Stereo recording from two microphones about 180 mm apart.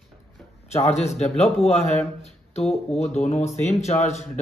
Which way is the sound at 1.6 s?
35° left (ahead or behind).